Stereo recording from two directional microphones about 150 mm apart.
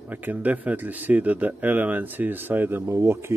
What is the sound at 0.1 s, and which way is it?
Speech, 10° right (ahead or behind).